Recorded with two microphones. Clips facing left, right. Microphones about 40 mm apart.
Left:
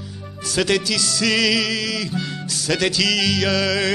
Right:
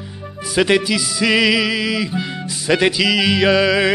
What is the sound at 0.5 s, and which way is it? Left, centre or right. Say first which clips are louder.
Music: right 4 dB; right.